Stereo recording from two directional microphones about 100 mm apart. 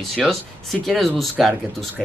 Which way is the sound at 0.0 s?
Centre (ahead or behind).